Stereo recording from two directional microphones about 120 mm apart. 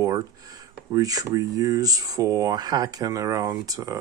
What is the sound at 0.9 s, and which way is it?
Speech, 30° right (ahead or behind).